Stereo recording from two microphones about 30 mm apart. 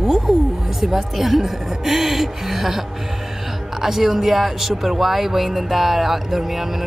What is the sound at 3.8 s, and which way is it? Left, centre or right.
Speech, centre.